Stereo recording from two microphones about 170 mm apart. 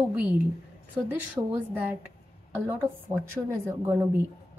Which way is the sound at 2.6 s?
15° right (ahead or behind).